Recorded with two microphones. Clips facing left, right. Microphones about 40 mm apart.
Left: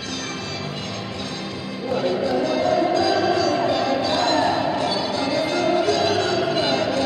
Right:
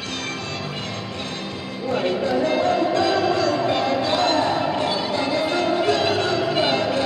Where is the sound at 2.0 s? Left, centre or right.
Right.